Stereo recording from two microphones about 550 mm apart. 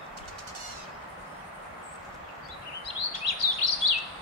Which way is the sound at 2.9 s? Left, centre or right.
Left.